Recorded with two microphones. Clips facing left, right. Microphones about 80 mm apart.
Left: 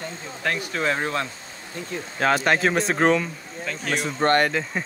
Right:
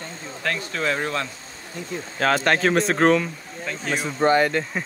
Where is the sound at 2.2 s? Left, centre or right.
Centre.